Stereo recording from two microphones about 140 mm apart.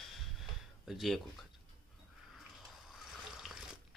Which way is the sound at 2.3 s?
Centre (ahead or behind).